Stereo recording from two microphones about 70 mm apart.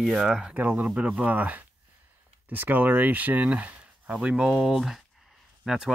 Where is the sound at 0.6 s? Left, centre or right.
Right.